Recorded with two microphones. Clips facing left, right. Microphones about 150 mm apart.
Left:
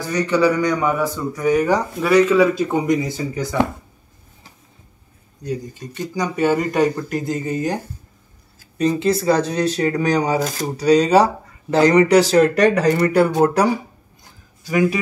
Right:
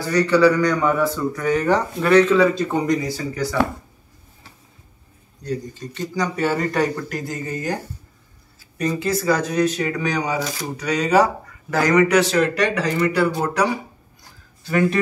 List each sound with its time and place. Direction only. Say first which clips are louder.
0.0 s a man's voice: right 2 dB; 20° left (ahead or behind)
5.4 s a man's voice: left 1 dB; 15° left (ahead or behind); by 13.7 s 45° left (ahead or behind)
14.6 s speech: left 1 dB; 10° left (ahead or behind)